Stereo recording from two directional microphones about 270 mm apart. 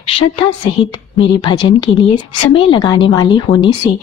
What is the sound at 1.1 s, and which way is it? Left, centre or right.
A woman's voice, centre.